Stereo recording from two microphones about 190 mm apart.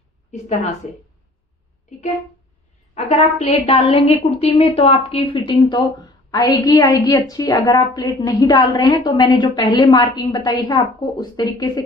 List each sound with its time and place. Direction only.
0.3 s a woman's voice: 35° left (ahead or behind)
2.9 s a woman's voice: 35° left (ahead or behind); by 11.8 s 20° left (ahead or behind)